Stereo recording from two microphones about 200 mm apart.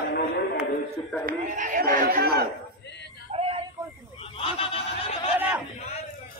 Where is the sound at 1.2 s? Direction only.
40° right (ahead or behind).